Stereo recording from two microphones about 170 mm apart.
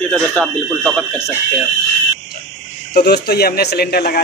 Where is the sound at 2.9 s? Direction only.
70° left (ahead or behind).